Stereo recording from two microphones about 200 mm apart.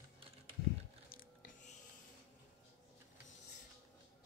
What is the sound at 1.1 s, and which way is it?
Music, 45° left (ahead or behind).